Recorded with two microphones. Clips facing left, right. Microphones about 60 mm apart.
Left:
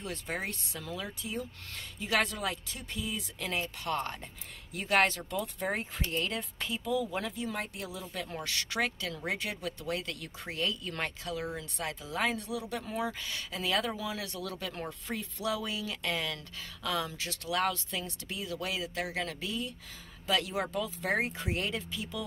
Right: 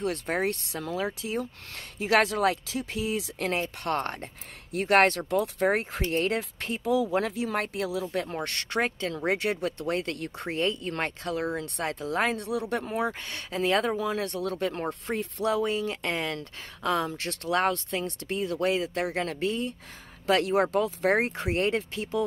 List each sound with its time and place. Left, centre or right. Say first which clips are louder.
0.0 s speech: right 9 dB; right
0.7 s speech: right 8 dB; right
8.4 s speech: right 1 dB; right
12.8 s speech: right 5 dB; right
14.9 s speech: right 8 dB; right
17.2 s speech: right 5 dB; right
18.0 s speech: right 9 dB; right
20.2 s speech: right 8 dB; right